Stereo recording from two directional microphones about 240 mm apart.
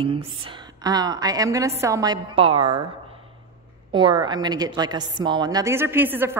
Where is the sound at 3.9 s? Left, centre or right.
Centre.